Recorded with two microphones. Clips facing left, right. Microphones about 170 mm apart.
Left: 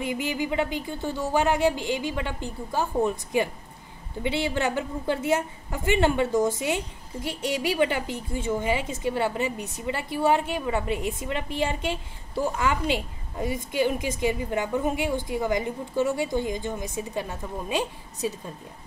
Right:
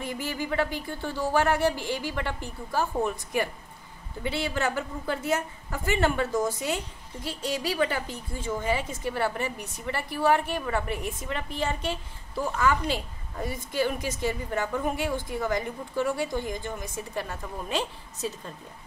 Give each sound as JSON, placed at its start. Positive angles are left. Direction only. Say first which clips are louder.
{"t": 0.0, "sound": "a woman's voice", "louder": "left 4 dB", "side_deg": 15}